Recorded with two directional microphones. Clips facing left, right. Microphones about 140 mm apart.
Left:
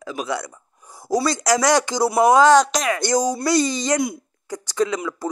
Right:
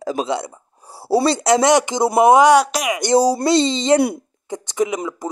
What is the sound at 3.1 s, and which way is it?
Speech, 30° right (ahead or behind).